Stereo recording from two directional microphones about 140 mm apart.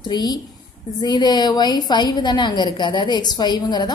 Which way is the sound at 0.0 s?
30° left (ahead or behind).